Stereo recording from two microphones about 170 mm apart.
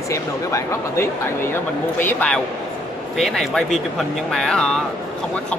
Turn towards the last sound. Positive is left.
turn(degrees=5)  # may be behind; listen again after turning